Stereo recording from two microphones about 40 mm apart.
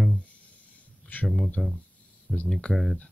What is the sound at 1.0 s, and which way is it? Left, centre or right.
Speech, left.